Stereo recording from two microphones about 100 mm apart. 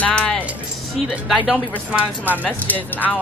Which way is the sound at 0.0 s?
10° left (ahead or behind).